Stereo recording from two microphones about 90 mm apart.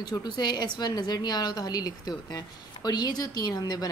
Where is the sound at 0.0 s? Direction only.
50° left (ahead or behind).